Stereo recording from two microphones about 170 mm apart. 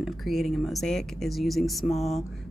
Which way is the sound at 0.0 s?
Centre (ahead or behind).